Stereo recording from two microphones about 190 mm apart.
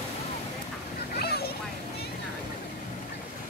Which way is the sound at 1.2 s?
55° left (ahead or behind).